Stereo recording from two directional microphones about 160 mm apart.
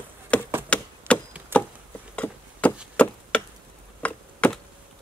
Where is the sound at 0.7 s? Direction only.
5° left (ahead or behind).